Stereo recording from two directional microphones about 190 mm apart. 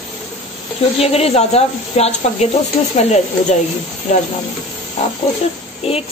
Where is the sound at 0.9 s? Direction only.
30° left (ahead or behind).